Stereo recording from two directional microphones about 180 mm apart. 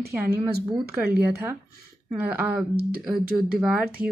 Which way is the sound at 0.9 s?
10° right (ahead or behind).